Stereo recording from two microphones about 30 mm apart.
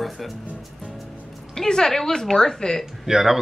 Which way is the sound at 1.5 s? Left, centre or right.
Left.